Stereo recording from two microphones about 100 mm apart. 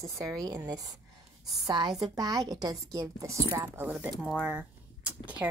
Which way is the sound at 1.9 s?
40° right (ahead or behind).